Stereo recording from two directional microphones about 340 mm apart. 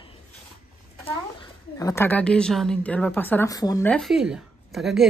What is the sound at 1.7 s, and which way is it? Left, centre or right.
A woman's voice, centre.